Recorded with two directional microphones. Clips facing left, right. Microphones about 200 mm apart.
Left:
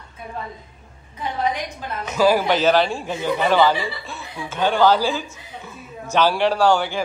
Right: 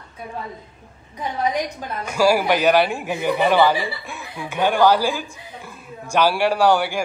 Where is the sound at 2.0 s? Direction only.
10° right (ahead or behind).